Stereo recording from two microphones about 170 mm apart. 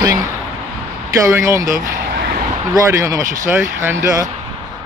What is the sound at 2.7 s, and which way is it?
Speech, 20° right (ahead or behind).